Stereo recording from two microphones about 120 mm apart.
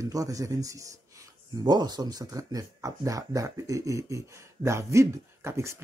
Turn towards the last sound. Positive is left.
turn(degrees=-25)  # may be behind; listen again after turning